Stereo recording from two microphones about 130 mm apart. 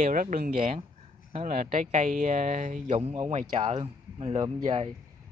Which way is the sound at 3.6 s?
50° right (ahead or behind).